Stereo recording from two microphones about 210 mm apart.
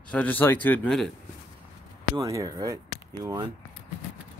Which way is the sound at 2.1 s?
15° right (ahead or behind).